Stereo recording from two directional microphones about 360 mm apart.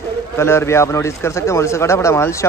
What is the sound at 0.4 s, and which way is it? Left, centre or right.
A man's voice, centre.